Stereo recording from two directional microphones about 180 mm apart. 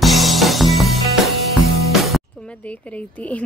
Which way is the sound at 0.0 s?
Centre (ahead or behind).